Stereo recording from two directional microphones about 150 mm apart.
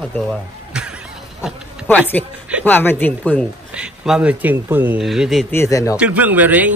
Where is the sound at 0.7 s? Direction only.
5° right (ahead or behind).